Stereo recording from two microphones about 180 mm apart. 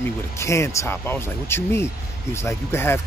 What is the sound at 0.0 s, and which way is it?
Speech, 15° left (ahead or behind).